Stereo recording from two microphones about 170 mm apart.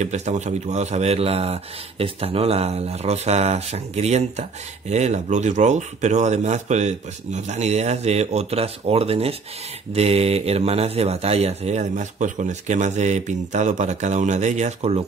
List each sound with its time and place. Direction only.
0.0 s speech: 40° right (ahead or behind)